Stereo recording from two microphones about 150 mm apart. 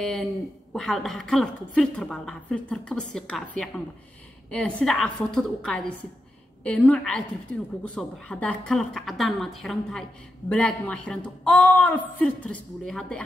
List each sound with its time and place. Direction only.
0.0 s a woman's voice: centre (ahead or behind)